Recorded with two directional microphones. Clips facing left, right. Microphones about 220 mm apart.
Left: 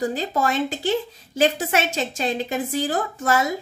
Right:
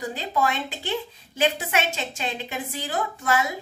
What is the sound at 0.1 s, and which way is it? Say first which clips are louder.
A woman's voice: left 3 dB; 45° left (ahead or behind).